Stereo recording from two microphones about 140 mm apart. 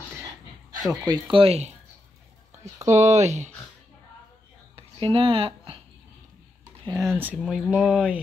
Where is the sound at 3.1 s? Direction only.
55° right (ahead or behind).